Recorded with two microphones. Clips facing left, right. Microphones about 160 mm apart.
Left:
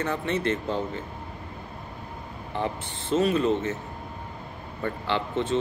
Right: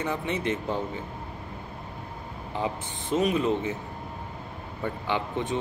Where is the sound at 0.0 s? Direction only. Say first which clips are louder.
Left 2 dB; 15° right (ahead or behind).